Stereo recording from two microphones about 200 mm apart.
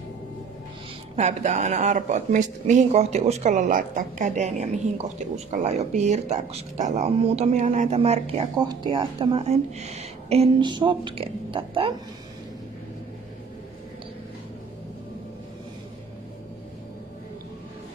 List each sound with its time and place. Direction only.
1.1 s speech: 35° right (ahead or behind)